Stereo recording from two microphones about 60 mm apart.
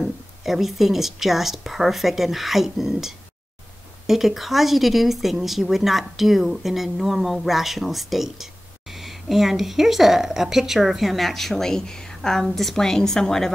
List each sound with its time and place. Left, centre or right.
0.0 s speech: centre